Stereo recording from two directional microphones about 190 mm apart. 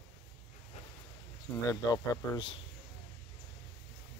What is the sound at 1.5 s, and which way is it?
Speech, 15° left (ahead or behind).